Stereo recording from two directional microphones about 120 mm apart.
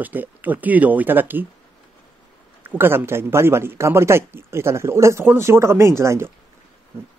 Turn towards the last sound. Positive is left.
turn(degrees=-20)  # may be behind; listen again after turning